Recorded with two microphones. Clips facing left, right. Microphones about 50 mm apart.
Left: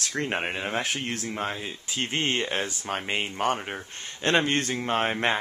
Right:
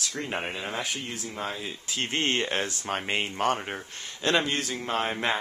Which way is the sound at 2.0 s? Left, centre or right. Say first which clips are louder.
Even; centre.